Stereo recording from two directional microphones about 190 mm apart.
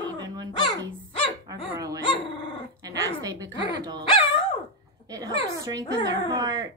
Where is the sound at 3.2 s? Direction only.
20° right (ahead or behind).